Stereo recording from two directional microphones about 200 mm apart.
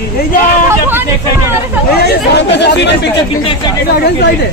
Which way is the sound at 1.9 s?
55° left (ahead or behind).